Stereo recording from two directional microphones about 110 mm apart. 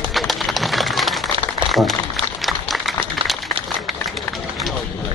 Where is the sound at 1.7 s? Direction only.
Centre (ahead or behind).